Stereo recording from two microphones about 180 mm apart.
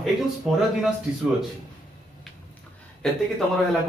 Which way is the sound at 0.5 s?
5° right (ahead or behind).